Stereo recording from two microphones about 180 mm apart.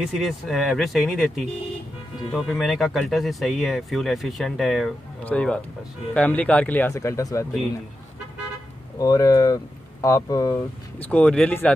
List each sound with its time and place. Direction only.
0.0 s speech: centre (ahead or behind); by 7.4 s 15° left (ahead or behind)
8.9 s speech: 20° left (ahead or behind)
11.0 s speech: 5° left (ahead or behind)